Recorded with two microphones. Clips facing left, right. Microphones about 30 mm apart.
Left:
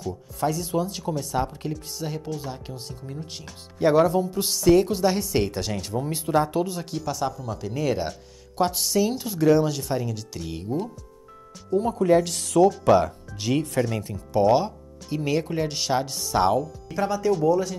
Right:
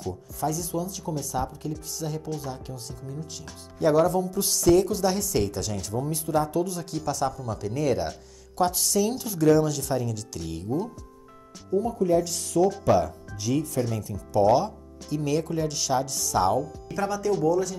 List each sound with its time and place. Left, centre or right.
0.4 s speech: left
0.7 s speech: left
2.0 s speech: left
3.8 s speech: left
7.1 s speech: centre
11.7 s speech: left
12.8 s speech: left
13.9 s speech: left
14.3 s speech: left
16.9 s speech: centre